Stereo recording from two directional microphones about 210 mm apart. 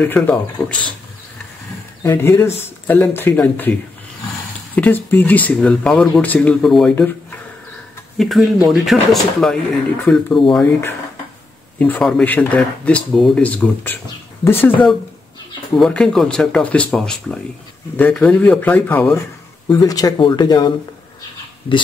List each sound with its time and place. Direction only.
0.0 s speech: 5° left (ahead or behind)
2.0 s speech: 10° left (ahead or behind)
4.7 s speech: 10° left (ahead or behind)
15.7 s speech: 5° left (ahead or behind); by 20.7 s 20° left (ahead or behind)